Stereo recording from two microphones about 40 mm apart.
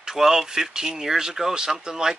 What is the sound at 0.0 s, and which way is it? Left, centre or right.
Speech, centre.